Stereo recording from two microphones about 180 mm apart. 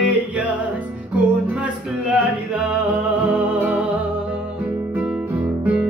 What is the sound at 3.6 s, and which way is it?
Music, 10° right (ahead or behind).